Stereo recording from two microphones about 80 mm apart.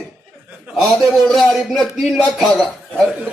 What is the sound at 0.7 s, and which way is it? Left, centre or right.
A man's voice, centre.